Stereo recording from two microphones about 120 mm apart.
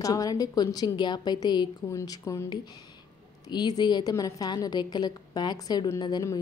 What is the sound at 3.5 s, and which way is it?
Speech, 35° left (ahead or behind).